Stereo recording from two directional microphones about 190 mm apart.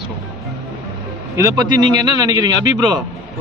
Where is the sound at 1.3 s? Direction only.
20° right (ahead or behind).